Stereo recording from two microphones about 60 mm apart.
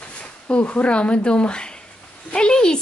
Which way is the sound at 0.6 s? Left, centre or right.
Left.